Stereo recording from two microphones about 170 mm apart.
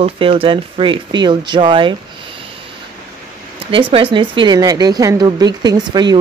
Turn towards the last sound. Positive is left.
turn(degrees=-25)  # may be behind; listen again after turning